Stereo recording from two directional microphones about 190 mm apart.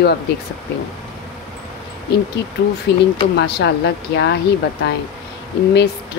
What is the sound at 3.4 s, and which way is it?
Speech, 60° left (ahead or behind).